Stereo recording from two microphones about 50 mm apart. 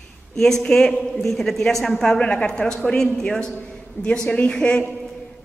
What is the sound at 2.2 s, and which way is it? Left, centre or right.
A woman's voice, left.